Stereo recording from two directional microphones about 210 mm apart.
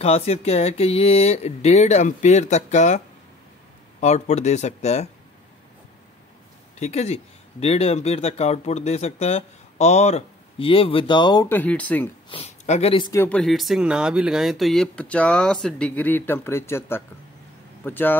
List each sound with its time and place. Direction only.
0.0 s speech: 30° left (ahead or behind)
4.0 s speech: 35° left (ahead or behind)
6.8 s speech: 30° left (ahead or behind); by 12.1 s 5° left (ahead or behind)
12.3 s speech: 30° left (ahead or behind); by 18.1 s 10° left (ahead or behind)